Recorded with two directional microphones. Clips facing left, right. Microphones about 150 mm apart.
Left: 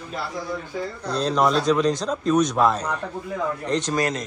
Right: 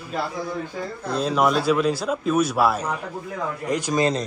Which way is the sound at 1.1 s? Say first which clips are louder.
Even; 5° right (ahead or behind).